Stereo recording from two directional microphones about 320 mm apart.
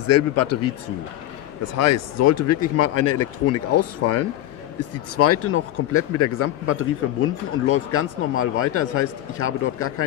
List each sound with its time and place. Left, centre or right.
0.1 s speech: left
1.8 s speech: left